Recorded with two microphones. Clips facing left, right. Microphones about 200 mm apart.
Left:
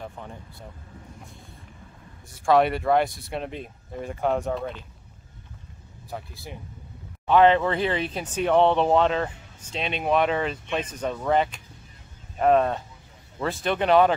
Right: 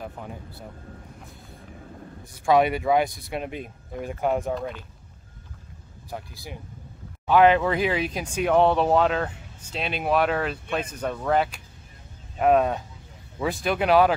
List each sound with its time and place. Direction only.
0.0 s speech: 5° right (ahead or behind)
2.2 s speech: centre (ahead or behind)
6.0 s speech: centre (ahead or behind)